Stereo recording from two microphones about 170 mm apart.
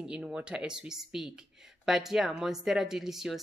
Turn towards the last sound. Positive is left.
turn(degrees=0)  # may be behind; listen again after turning